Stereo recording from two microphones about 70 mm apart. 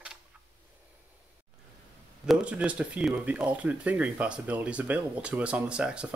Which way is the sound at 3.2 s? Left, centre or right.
Centre.